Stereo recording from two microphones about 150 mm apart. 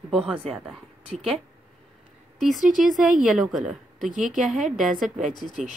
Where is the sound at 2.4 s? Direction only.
Centre (ahead or behind).